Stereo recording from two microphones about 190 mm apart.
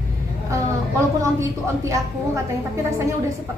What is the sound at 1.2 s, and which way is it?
A woman's voice, 15° right (ahead or behind).